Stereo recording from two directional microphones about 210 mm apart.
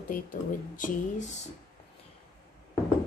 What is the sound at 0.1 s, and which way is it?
Speech, 40° left (ahead or behind).